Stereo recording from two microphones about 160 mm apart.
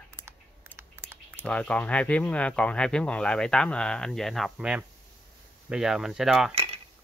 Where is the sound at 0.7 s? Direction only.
15° right (ahead or behind).